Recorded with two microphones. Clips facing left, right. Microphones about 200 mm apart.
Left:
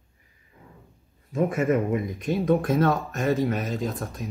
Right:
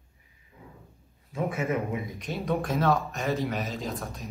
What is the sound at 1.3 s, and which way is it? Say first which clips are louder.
A man's voice: left 6 dB; 50° left (ahead or behind).